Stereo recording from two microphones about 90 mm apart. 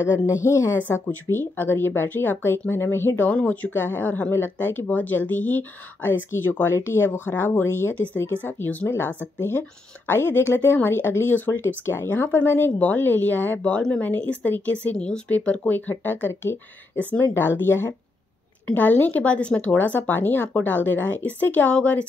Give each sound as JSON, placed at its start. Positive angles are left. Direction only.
{"t": 0.3, "sound": "speech", "side_deg": 30}